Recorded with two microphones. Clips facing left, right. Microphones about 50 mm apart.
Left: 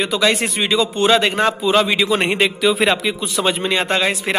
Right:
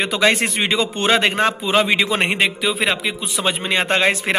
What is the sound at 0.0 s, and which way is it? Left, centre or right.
A man's voice, right.